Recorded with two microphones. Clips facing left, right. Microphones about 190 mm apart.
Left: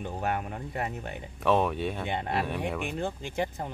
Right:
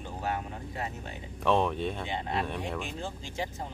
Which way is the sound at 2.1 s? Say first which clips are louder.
Left 2 dB; 60° left (ahead or behind).